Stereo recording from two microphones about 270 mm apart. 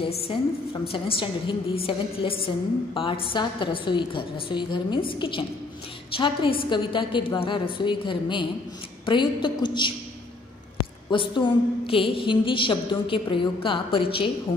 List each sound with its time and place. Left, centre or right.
0.0 s a woman's voice: centre
11.1 s a woman's voice: centre